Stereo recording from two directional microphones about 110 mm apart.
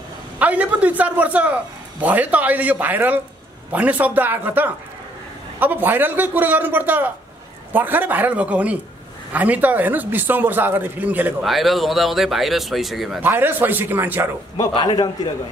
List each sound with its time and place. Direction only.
0.4 s a man's voice: 15° right (ahead or behind)
11.4 s speech: centre (ahead or behind)
13.2 s a man's voice: 15° right (ahead or behind)
14.7 s a man's voice: 45° left (ahead or behind)